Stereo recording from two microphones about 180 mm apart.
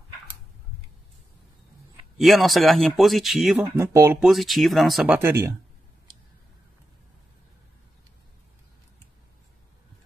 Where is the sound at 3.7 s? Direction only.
15° right (ahead or behind).